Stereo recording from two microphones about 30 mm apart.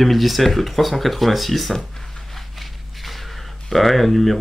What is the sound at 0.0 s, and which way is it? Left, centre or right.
Speech, centre.